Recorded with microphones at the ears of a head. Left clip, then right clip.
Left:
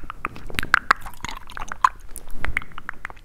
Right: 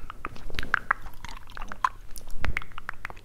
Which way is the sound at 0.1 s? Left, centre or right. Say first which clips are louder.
Left 8 dB; left.